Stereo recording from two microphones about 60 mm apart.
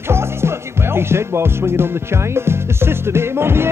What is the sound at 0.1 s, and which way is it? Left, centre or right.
Music, right.